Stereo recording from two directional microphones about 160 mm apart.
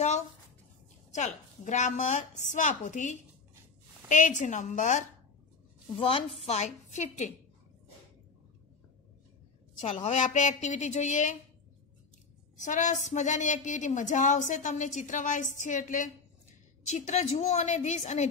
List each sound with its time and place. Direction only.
1.1 s a woman's voice: 50° left (ahead or behind)
5.9 s a woman's voice: 35° left (ahead or behind)
10.0 s a woman's voice: 50° left (ahead or behind)
12.6 s a woman's voice: 50° left (ahead or behind)